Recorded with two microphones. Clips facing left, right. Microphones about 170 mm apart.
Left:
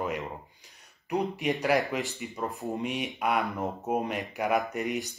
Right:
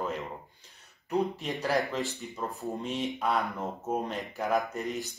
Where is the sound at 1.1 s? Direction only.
15° left (ahead or behind).